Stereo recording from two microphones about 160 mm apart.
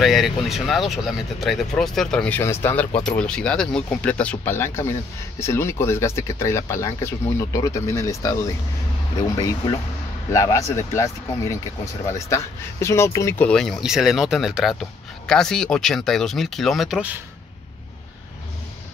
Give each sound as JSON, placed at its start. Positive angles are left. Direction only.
{"t": 0.0, "sound": "speech", "side_deg": 0}